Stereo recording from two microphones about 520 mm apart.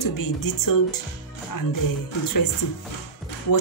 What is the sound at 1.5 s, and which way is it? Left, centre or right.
Music, left.